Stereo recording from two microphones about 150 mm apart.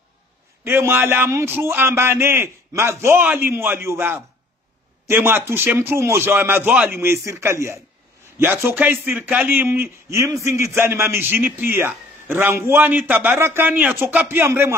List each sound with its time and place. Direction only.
0.7 s a man's voice: 15° right (ahead or behind)